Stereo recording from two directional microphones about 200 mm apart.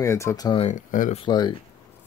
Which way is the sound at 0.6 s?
40° left (ahead or behind).